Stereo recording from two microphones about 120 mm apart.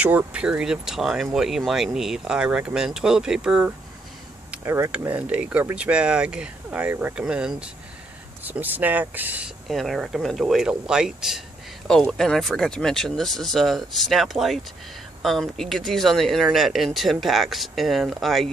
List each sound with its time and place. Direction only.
0.0 s speech: 10° right (ahead or behind)
4.6 s speech: 20° right (ahead or behind)
9.7 s speech: centre (ahead or behind)